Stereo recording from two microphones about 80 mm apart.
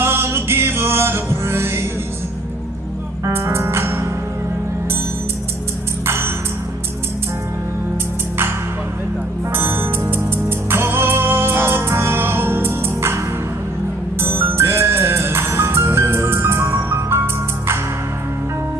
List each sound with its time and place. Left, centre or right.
0.0 s music: right
3.3 s music: right
6.0 s ping: right
9.5 s music: right
14.2 s music: right